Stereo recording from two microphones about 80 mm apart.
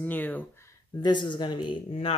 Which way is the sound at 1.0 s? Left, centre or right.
Left.